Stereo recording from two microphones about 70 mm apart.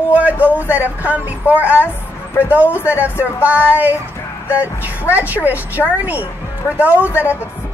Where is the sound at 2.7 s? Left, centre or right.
Left.